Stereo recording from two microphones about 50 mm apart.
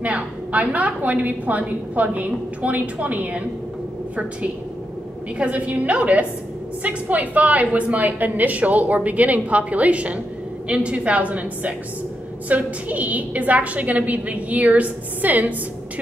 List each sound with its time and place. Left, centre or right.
0.0 s a woman's voice: right
5.4 s a woman's voice: right